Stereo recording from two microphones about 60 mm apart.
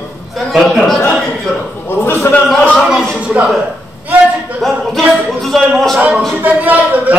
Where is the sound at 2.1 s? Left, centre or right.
Left.